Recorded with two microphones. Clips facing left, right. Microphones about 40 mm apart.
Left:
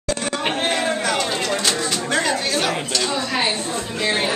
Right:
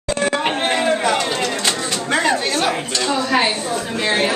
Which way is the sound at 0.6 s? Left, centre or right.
Centre.